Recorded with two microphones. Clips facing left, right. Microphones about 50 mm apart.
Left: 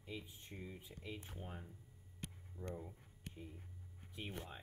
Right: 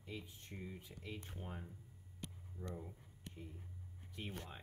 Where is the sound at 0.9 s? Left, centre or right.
Centre.